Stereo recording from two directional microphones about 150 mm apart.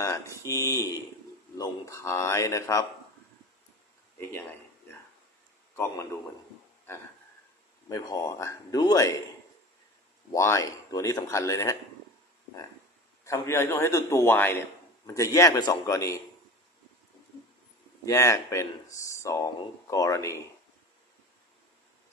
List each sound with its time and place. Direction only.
0.0 s speech: 20° left (ahead or behind)
4.2 s speech: 15° left (ahead or behind)
7.9 s speech: 25° left (ahead or behind)
10.3 s speech: 20° left (ahead or behind)
13.2 s a man's voice: 20° left (ahead or behind)
18.0 s speech: 20° left (ahead or behind)